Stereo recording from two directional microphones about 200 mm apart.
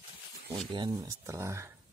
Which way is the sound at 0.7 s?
20° right (ahead or behind).